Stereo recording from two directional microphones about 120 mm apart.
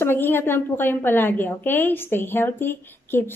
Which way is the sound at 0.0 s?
20° left (ahead or behind).